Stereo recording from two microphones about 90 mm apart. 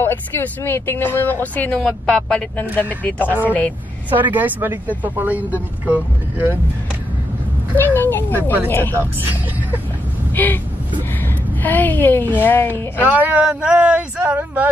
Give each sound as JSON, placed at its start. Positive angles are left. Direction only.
{"t": 0.0, "sound": "speech", "side_deg": 25}
{"t": 4.1, "sound": "a woman's voice", "side_deg": -20}
{"t": 7.7, "sound": "speech", "side_deg": 25}
{"t": 9.2, "sound": "a woman's voice", "side_deg": -20}
{"t": 10.3, "sound": "speech", "side_deg": 20}
{"t": 11.6, "sound": "speech", "side_deg": 20}
{"t": 13.0, "sound": "speech", "side_deg": -20}